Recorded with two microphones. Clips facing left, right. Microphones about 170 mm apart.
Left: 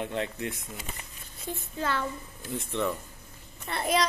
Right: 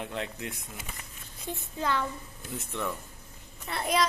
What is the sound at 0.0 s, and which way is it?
Speech, centre (ahead or behind).